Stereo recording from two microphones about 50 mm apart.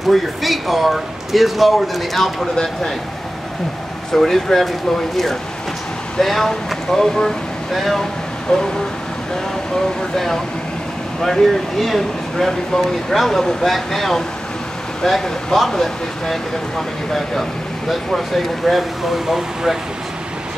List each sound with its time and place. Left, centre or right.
0.1 s speech: centre
4.1 s speech: centre
8.5 s speech: centre
10.1 s speech: centre